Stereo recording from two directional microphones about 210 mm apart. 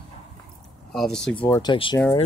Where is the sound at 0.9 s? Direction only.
Centre (ahead or behind).